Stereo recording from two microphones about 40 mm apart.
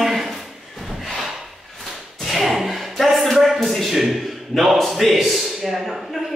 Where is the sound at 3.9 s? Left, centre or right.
Centre.